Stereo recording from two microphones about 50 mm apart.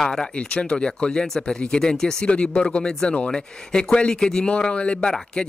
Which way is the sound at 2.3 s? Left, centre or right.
Left.